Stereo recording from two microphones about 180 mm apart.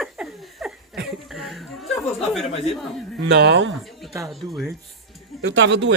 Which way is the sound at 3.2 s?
70° right (ahead or behind).